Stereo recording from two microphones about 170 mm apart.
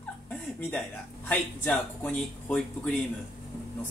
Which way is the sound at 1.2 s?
10° left (ahead or behind).